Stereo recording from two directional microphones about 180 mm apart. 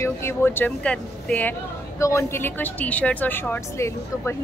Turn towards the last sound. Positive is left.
turn(degrees=15)  # may be behind; listen again after turning